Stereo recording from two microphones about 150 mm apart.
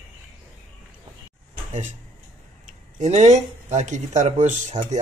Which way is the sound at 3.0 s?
50° right (ahead or behind).